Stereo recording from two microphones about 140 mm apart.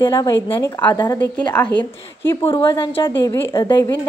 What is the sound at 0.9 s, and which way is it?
Speech, 30° left (ahead or behind).